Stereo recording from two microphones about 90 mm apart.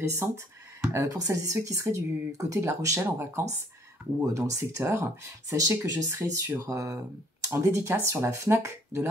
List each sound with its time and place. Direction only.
0.2 s speech: 25° right (ahead or behind)
0.7 s speech: 40° right (ahead or behind)
5.9 s speech: 40° right (ahead or behind)
6.1 s speech: 25° right (ahead or behind)